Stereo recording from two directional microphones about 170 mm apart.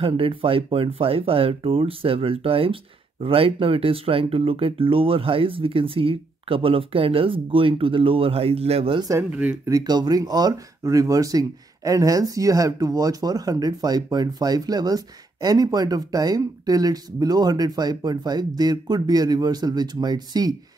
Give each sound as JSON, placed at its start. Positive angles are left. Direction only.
{"t": 0.0, "sound": "speech", "side_deg": -30}
{"t": 9.1, "sound": "speech", "side_deg": -10}